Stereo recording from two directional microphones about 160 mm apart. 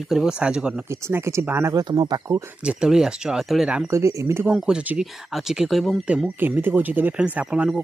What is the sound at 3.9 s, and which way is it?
Speech, 20° right (ahead or behind).